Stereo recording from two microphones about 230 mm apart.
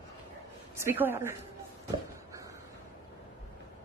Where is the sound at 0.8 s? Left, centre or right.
Centre.